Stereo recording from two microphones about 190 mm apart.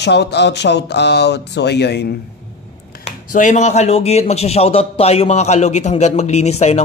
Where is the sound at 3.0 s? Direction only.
40° left (ahead or behind).